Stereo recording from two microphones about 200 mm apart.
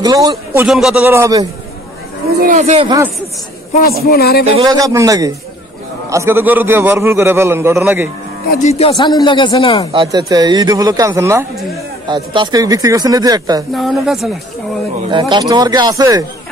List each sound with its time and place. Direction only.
0.0 s a man's voice: 20° right (ahead or behind)
0.7 s a man's voice: centre (ahead or behind)
2.4 s speech: 35° right (ahead or behind)
4.0 s speech: 50° left (ahead or behind)
4.6 s a man's voice: 15° right (ahead or behind)
8.6 s speech: 30° left (ahead or behind)
10.1 s speech: 20° right (ahead or behind)
13.7 s speech: centre (ahead or behind)
15.0 s speech: 20° right (ahead or behind)